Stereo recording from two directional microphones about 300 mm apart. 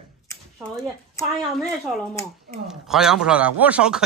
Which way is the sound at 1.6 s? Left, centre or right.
Centre.